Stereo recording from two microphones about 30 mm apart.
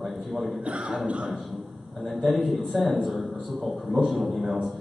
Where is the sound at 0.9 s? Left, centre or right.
Right.